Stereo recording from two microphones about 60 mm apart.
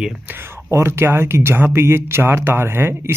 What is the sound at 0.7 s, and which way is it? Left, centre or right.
Speech, right.